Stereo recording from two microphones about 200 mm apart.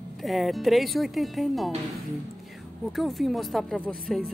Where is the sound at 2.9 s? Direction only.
Centre (ahead or behind).